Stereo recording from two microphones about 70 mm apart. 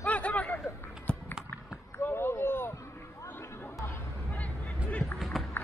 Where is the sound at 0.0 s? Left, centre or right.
Centre.